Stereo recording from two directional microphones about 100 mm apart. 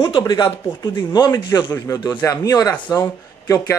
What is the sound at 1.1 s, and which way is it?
Speech, 40° left (ahead or behind).